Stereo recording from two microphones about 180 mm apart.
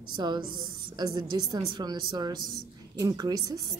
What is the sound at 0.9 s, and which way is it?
A woman's voice, 20° right (ahead or behind).